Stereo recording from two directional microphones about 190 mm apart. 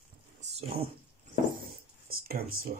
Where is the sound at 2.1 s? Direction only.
50° right (ahead or behind).